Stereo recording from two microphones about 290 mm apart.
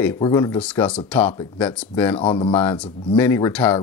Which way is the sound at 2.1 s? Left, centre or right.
Centre.